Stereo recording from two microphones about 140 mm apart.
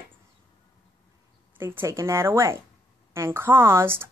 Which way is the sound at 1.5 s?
15° right (ahead or behind).